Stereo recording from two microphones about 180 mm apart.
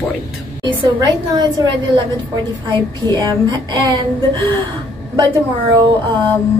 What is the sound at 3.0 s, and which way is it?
Speech, 20° right (ahead or behind).